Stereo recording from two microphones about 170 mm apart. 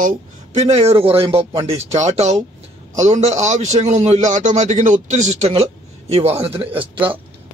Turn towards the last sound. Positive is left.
turn(degrees=-30)  # may be behind; listen again after turning